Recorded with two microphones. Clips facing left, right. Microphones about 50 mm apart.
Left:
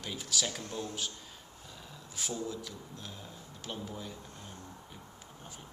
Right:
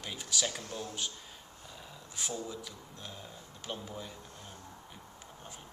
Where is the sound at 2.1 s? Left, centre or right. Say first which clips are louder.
Left 2 dB; centre.